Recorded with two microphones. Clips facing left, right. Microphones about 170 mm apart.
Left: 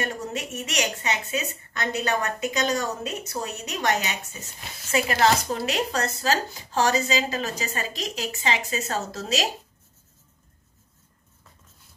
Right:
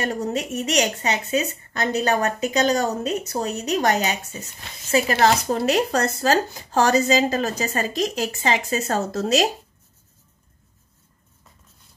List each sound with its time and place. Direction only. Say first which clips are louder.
0.1 s a woman's voice: right 7 dB; 35° right (ahead or behind)
5.7 s a woman's voice: right 7 dB; 45° right (ahead or behind)